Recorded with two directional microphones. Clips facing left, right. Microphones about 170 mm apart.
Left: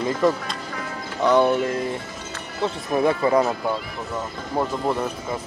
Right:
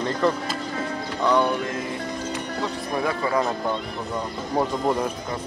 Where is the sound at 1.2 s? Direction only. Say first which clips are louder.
Left 3 dB; 25° left (ahead or behind).